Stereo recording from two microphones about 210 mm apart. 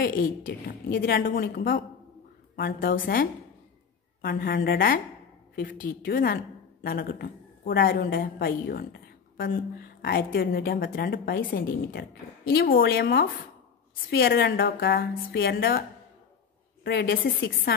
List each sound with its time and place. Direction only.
0.0 s a woman's voice: 45° left (ahead or behind)
16.8 s a woman's voice: 50° left (ahead or behind)